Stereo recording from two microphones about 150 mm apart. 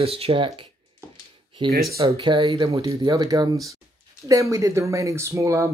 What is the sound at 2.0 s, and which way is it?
Speech, 30° right (ahead or behind).